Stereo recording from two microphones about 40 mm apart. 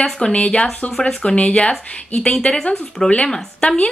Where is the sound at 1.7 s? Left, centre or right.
Left.